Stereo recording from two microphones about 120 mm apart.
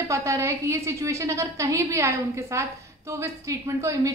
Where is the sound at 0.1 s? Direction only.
25° right (ahead or behind).